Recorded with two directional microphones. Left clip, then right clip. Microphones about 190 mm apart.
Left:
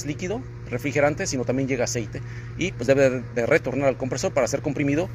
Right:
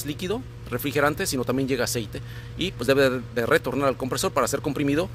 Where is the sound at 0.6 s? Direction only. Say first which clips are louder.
Left 1 dB; 20° right (ahead or behind).